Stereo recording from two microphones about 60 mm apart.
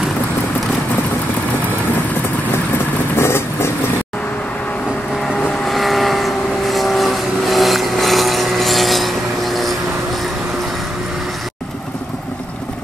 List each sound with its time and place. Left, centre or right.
3.2 s vehicle: left
5.7 s vehicle: centre